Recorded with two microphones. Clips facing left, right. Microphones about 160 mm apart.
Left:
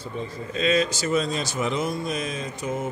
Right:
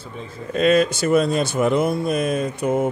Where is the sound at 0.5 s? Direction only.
60° right (ahead or behind).